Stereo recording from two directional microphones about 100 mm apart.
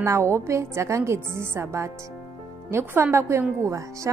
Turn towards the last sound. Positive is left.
turn(degrees=-30)  # may be behind; listen again after turning